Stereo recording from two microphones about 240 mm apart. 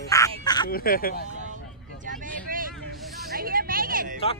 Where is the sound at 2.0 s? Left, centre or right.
Right.